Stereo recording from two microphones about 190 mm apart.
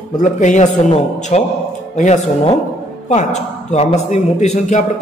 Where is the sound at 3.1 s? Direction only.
35° left (ahead or behind).